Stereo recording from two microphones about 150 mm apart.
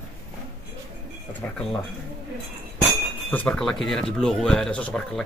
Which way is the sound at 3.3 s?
10° left (ahead or behind).